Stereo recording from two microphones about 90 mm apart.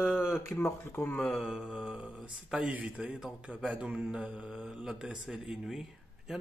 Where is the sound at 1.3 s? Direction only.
5° right (ahead or behind).